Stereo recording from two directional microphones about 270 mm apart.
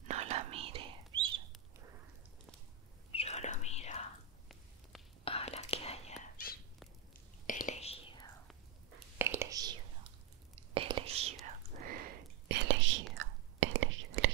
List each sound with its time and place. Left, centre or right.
0.0 s whispering: right
3.1 s whispering: left
5.2 s whispering: left
7.4 s whispering: left
9.2 s whispering: centre; by 14.3 s right